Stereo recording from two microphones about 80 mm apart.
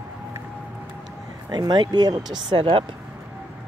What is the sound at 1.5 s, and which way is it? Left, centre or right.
Speech, right.